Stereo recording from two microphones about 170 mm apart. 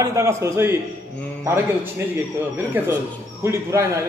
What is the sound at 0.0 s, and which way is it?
Speech, 15° right (ahead or behind).